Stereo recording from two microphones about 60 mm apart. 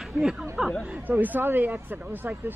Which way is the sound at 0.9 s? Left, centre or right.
Right.